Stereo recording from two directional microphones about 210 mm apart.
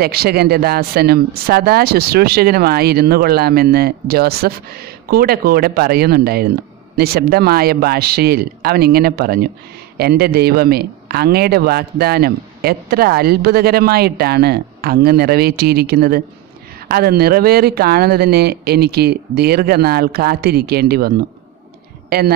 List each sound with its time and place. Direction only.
0.0 s speech: 50° right (ahead or behind)
22.1 s speech: 45° right (ahead or behind)